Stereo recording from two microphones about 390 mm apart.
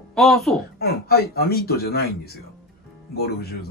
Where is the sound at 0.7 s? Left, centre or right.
Left.